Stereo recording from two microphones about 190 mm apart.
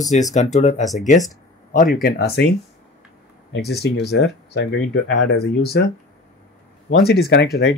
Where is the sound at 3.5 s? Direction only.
60° left (ahead or behind).